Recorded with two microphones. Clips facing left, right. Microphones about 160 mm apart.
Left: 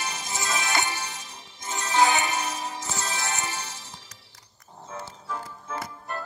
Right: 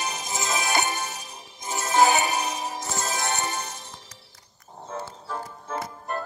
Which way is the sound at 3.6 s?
50° right (ahead or behind).